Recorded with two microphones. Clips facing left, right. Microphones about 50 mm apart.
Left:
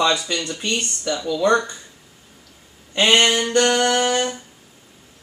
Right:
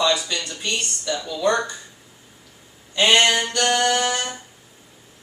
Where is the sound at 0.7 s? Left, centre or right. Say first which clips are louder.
Left 1 dB; left.